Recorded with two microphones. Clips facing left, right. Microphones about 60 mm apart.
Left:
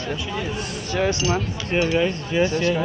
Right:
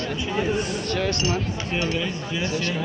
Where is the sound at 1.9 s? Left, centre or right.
Left.